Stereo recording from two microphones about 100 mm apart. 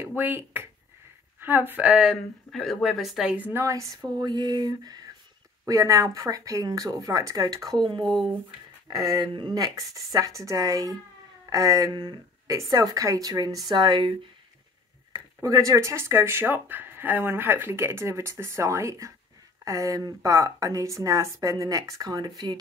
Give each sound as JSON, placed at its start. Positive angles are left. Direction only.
{"t": 0.0, "sound": "speech", "side_deg": -20}
{"t": 2.0, "sound": "speech", "side_deg": 0}
{"t": 3.3, "sound": "speech", "side_deg": -20}
{"t": 3.6, "sound": "speech", "side_deg": -30}
{"t": 4.2, "sound": "speech", "side_deg": -45}
{"t": 7.8, "sound": "speech", "side_deg": -50}
{"t": 8.8, "sound": "speech", "side_deg": -35}
{"t": 12.4, "sound": "speech", "side_deg": -35}
{"t": 15.4, "sound": "speech", "side_deg": -30}